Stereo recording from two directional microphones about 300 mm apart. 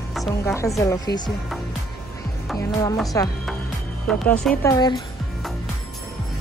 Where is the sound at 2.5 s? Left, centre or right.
Centre.